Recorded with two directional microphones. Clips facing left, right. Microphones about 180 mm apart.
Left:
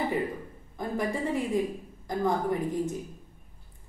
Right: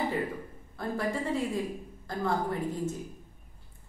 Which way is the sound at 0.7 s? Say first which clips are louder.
Left 1 dB; 15° left (ahead or behind).